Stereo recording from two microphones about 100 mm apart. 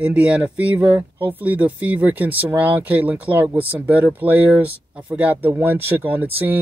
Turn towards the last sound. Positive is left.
turn(degrees=-20)  # may be behind; listen again after turning